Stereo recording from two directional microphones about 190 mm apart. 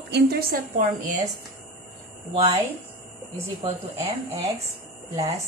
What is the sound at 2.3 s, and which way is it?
Speech, 30° right (ahead or behind).